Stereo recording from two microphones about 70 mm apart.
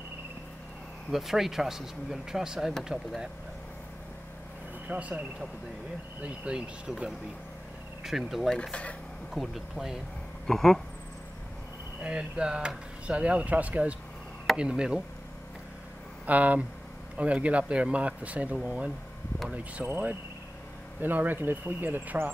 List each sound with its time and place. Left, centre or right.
1.1 s speech: centre
4.8 s speech: right
6.2 s speech: centre
12.0 s speech: centre
16.3 s speech: right
19.9 s speech: right